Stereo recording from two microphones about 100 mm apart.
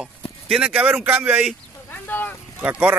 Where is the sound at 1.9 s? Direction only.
20° left (ahead or behind).